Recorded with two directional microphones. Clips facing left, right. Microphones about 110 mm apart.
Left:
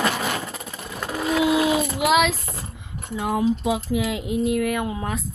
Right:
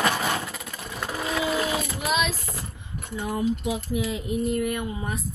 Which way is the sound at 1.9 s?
90° left.